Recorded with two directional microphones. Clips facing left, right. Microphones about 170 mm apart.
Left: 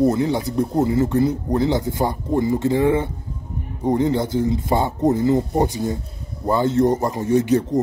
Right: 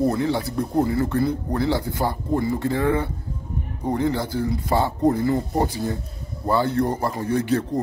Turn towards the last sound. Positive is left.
turn(degrees=20)  # may be behind; listen again after turning